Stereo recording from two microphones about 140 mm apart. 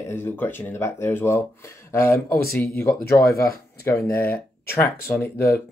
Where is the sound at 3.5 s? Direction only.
90° left.